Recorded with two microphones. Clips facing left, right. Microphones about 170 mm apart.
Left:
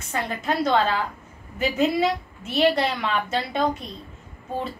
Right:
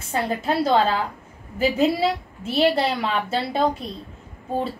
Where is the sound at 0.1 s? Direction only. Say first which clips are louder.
Right 3 dB; 30° right (ahead or behind).